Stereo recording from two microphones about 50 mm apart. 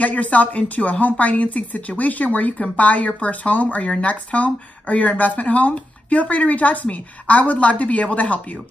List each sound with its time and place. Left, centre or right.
0.0 s speech: left